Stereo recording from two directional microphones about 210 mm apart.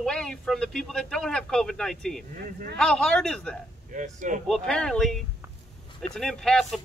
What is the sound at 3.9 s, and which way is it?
Speech, 40° right (ahead or behind).